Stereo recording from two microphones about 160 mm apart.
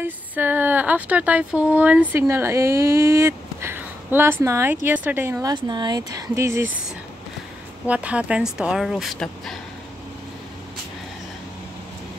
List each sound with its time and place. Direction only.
0.0 s speech: 10° right (ahead or behind)
5.5 s speech: 25° right (ahead or behind)
7.8 s speech: 10° right (ahead or behind)